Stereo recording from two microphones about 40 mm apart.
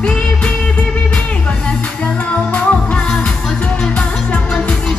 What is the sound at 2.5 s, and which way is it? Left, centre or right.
Music, left.